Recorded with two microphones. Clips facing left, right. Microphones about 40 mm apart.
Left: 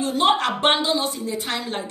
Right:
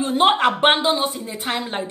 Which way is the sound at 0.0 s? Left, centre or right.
Right.